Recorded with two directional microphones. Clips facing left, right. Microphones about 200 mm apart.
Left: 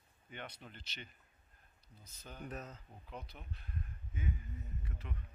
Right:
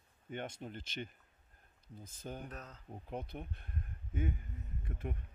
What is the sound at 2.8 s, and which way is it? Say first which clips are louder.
A man's voice: right 7 dB; 50° right (ahead or behind).